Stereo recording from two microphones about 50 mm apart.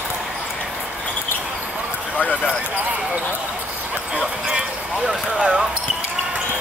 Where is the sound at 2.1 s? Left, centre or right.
Left.